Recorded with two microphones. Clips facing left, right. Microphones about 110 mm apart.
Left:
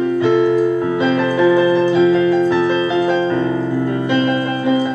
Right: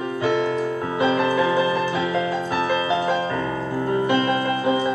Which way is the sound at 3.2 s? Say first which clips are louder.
Left 8 dB; 25° left (ahead or behind).